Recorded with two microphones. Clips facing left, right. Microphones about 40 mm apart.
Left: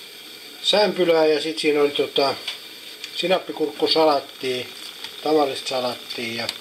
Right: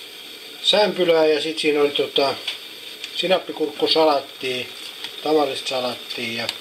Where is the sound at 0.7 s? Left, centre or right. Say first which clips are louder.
Right 1 dB; centre.